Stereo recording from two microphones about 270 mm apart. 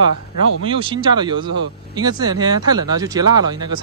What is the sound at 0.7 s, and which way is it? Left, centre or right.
Speech, centre.